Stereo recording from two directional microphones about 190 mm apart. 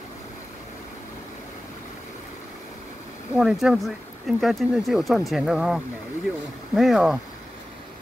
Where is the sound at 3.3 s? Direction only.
Centre (ahead or behind).